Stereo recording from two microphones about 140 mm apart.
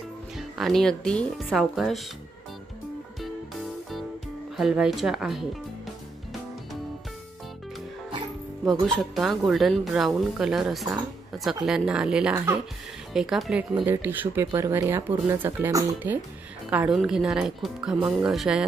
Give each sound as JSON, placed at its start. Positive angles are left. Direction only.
{"t": 0.4, "sound": "speech", "side_deg": 0}
{"t": 4.6, "sound": "speech", "side_deg": -5}
{"t": 8.8, "sound": "speech", "side_deg": 0}